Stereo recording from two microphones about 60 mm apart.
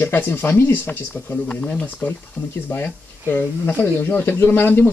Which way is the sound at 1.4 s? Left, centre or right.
Centre.